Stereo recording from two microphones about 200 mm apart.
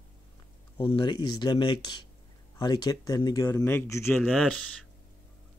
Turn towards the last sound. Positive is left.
turn(degrees=5)  # may be behind; listen again after turning